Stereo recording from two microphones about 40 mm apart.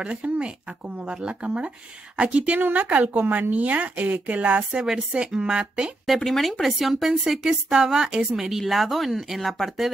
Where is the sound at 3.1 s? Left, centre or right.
Right.